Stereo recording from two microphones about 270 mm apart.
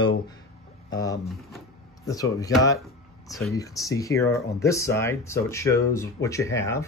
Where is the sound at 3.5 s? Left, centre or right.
Centre.